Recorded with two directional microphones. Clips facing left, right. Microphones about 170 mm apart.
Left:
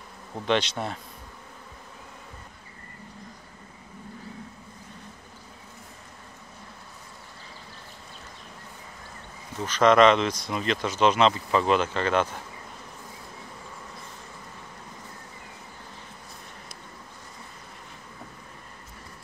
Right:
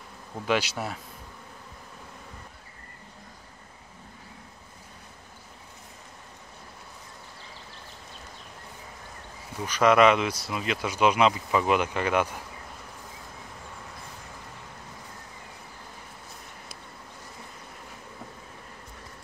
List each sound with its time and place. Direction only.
0.5 s speech: 5° right (ahead or behind)
9.6 s speech: 10° right (ahead or behind)